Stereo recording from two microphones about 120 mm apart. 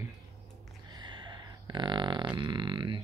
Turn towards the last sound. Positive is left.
turn(degrees=-40)  # may be behind; listen again after turning